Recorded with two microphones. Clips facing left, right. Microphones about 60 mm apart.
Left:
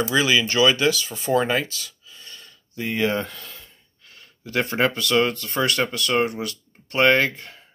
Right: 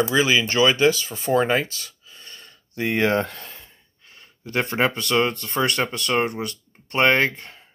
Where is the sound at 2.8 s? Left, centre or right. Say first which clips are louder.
Right 3 dB; right.